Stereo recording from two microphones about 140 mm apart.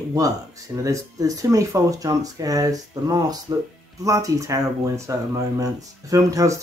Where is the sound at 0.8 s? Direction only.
25° right (ahead or behind).